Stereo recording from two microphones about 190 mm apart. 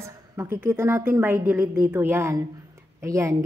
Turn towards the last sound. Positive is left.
turn(degrees=-15)  # may be behind; listen again after turning